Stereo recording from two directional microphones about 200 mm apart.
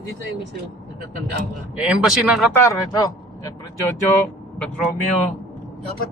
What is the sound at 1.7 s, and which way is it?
Speech, 5° right (ahead or behind).